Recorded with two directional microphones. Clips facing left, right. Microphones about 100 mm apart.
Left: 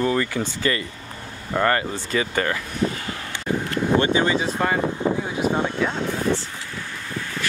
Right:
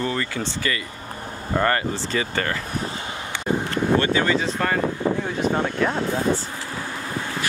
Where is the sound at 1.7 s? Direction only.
10° left (ahead or behind).